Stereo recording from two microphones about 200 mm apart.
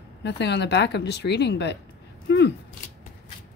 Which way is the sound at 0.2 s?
60° left (ahead or behind).